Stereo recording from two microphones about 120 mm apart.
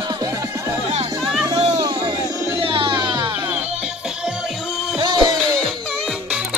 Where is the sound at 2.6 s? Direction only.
45° right (ahead or behind).